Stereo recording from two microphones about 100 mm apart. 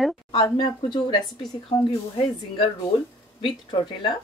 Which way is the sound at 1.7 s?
75° left (ahead or behind).